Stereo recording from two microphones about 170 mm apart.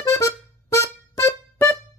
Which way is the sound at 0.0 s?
15° left (ahead or behind).